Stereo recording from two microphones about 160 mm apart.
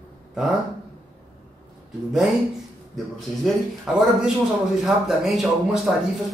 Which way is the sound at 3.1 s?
Centre (ahead or behind).